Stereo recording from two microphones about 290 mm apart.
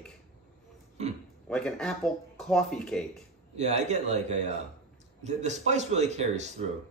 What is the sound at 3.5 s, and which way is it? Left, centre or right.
A man's voice, right.